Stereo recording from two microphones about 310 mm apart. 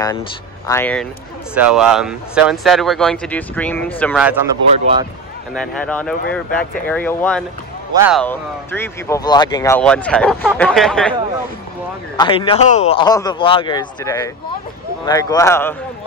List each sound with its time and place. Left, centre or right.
0.7 s speech: centre
5.5 s speech: centre
12.2 s speech: centre